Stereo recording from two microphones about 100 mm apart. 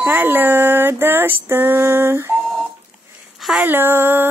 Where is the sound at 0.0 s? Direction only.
20° right (ahead or behind).